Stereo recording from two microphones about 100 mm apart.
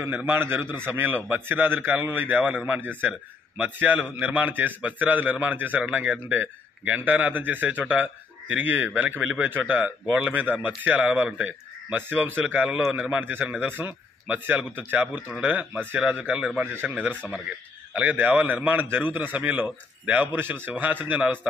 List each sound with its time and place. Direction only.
0.0 s a man's voice: 20° right (ahead or behind)